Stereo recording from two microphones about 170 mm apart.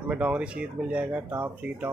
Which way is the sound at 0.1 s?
5° right (ahead or behind).